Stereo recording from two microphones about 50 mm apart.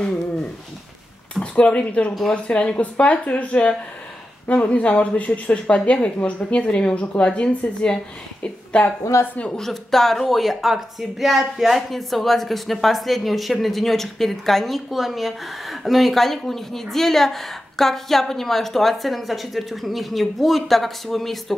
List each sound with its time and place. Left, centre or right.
1.3 s a woman's voice: centre
8.7 s a woman's voice: left
9.1 s speech: left
9.6 s speech: centre